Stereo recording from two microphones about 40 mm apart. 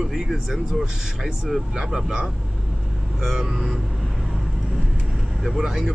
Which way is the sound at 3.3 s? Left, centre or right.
Centre.